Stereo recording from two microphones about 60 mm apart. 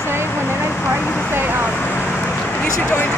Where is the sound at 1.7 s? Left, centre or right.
Left.